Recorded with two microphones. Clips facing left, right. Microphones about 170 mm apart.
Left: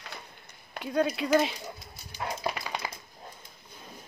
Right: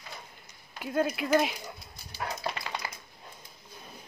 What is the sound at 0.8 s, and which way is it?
Speech, 5° right (ahead or behind).